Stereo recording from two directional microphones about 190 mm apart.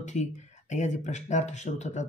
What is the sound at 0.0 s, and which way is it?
Speech, 40° left (ahead or behind).